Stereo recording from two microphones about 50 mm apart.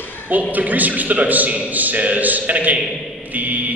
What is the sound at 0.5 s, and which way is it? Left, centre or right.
A man's voice, right.